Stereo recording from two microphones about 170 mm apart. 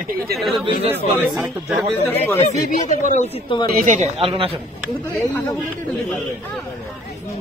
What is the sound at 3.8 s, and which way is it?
Speech, 45° right (ahead or behind).